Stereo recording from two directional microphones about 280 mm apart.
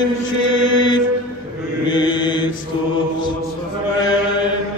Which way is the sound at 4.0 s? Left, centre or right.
Centre.